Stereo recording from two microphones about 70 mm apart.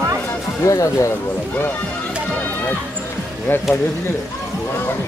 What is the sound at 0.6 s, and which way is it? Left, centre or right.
Speech, left.